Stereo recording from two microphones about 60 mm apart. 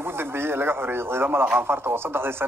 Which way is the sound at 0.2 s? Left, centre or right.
Right.